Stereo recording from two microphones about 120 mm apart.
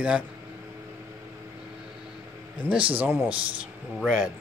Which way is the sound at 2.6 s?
10° right (ahead or behind).